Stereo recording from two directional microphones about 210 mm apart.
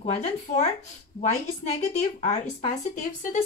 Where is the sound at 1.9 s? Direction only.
35° left (ahead or behind).